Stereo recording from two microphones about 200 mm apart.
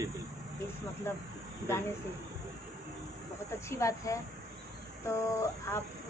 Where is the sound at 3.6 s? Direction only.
15° left (ahead or behind).